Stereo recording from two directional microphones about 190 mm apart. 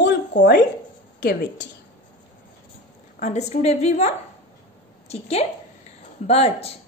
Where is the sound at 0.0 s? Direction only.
65° left (ahead or behind).